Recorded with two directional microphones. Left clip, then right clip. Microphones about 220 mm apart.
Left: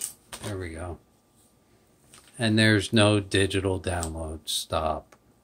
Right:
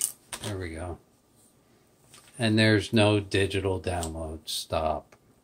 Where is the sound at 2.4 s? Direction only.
15° left (ahead or behind).